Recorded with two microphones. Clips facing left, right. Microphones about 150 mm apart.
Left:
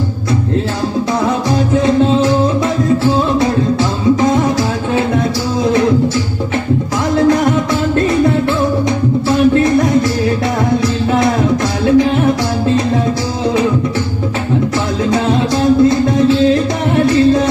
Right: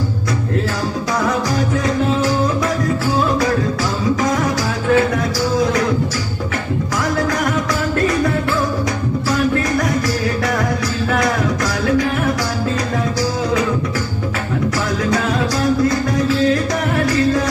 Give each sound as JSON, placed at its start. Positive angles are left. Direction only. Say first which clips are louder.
{"t": 1.2, "sound": "music", "louder": "left 4 dB", "side_deg": 25}
{"t": 7.2, "sound": "music", "louder": "left 11 dB", "side_deg": 25}
{"t": 11.1, "sound": "music", "louder": "left 4 dB", "side_deg": 25}
{"t": 15.0, "sound": "music", "louder": "left 6 dB", "side_deg": 25}